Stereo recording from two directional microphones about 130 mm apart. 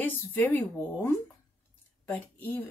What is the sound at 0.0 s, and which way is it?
A woman's voice, 15° left (ahead or behind).